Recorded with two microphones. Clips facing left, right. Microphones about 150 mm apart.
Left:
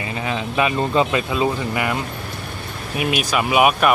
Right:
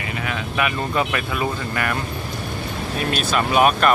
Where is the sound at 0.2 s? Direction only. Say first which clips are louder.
Left 4 dB; 25° left (ahead or behind).